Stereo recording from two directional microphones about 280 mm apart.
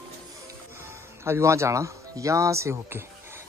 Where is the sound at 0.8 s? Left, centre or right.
Centre.